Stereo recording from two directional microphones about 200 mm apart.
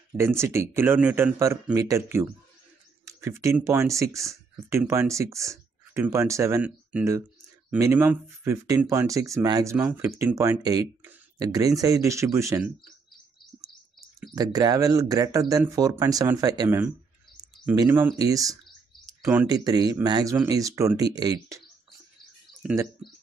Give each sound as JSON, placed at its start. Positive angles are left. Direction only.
{"t": 0.4, "sound": "speech", "side_deg": -15}
{"t": 14.3, "sound": "speech", "side_deg": -20}
{"t": 22.6, "sound": "speech", "side_deg": -5}